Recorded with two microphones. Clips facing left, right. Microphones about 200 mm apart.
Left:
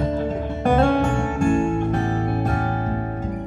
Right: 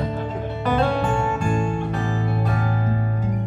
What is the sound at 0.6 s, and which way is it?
Music, 50° left (ahead or behind).